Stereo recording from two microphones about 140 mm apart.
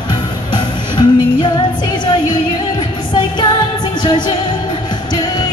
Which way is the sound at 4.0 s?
35° left (ahead or behind).